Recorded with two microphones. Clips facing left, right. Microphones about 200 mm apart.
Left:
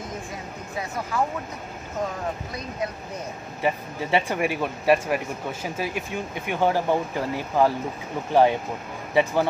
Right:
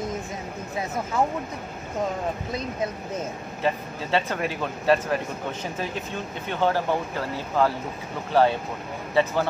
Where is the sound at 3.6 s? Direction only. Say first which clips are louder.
Left 1 dB; 15° left (ahead or behind).